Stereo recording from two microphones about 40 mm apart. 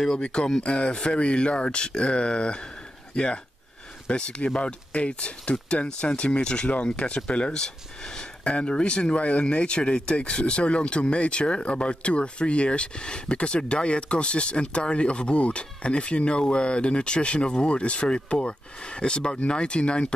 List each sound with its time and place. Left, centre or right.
0.0 s speech: centre
4.1 s speech: left
7.6 s speech: centre